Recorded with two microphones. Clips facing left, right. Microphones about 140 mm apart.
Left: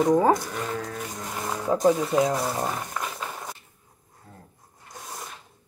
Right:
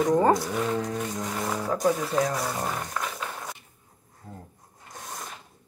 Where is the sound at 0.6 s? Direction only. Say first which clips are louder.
Right 4 dB; 10° right (ahead or behind).